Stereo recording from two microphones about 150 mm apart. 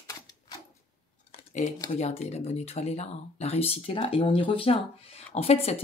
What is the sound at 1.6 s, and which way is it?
Speech, 55° left (ahead or behind).